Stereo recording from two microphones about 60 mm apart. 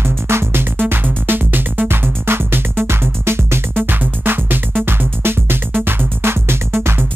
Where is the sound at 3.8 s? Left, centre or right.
Right.